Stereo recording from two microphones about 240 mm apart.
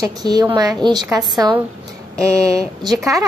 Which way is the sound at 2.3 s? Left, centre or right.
Centre.